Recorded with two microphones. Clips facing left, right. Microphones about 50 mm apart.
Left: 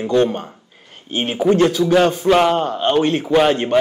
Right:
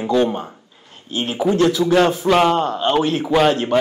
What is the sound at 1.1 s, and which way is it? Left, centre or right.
Speech, centre.